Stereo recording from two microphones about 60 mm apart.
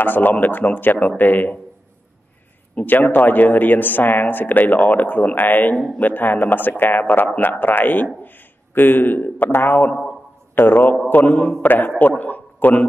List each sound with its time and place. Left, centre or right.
0.0 s speech: left
2.7 s a man's voice: left